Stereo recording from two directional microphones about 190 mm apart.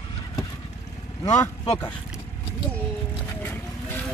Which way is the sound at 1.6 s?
30° left (ahead or behind).